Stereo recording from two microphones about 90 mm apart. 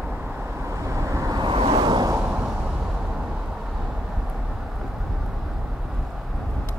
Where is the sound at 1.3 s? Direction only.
65° right (ahead or behind).